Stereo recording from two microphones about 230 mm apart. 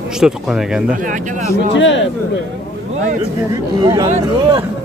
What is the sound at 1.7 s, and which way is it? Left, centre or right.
Speech, left.